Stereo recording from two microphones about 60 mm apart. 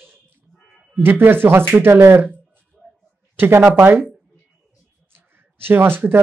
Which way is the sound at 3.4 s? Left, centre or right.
Right.